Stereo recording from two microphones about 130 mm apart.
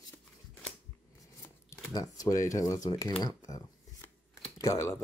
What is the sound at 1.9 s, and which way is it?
Speech, 25° left (ahead or behind).